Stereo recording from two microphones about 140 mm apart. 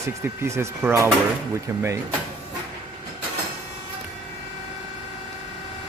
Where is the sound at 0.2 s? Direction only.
20° right (ahead or behind).